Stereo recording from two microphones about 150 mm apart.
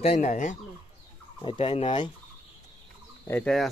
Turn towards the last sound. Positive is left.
turn(degrees=10)  # may be behind; listen again after turning